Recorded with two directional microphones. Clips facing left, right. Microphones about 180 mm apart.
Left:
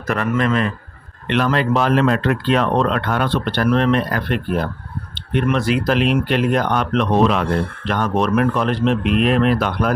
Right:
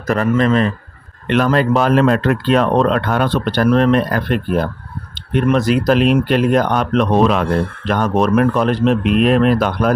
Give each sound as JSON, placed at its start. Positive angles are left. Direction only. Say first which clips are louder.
{"t": 0.0, "sound": "speech", "louder": "right 4 dB", "side_deg": -35}
{"t": 1.2, "sound": "speech", "louder": "right 4 dB", "side_deg": -45}